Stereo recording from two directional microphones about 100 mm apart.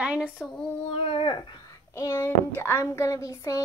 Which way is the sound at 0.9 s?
70° left (ahead or behind).